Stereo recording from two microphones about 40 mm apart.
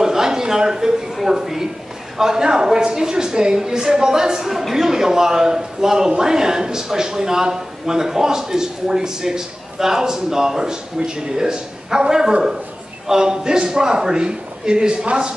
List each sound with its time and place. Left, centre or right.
0.0 s a woman's voice: centre